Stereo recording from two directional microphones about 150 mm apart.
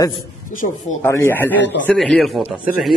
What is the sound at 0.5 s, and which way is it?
Speech, 60° left (ahead or behind).